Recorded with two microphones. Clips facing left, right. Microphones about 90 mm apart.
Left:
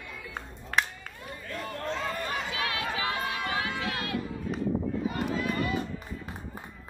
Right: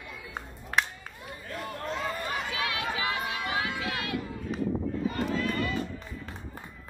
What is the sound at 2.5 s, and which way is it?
Run, 30° left (ahead or behind).